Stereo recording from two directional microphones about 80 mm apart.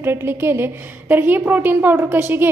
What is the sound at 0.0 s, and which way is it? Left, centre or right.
A woman's voice, right.